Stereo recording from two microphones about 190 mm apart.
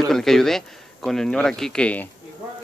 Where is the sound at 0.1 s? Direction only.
Centre (ahead or behind).